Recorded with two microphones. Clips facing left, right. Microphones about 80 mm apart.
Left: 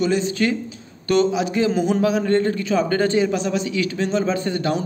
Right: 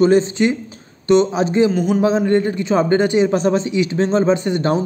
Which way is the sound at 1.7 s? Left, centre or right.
Centre.